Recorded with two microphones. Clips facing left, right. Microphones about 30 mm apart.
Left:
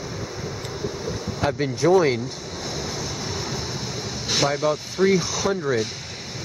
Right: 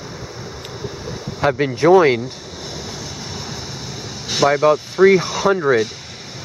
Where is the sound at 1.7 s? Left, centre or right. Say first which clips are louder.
Right 6 dB; right.